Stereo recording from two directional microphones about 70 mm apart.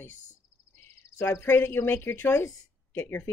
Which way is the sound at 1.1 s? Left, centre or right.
Left.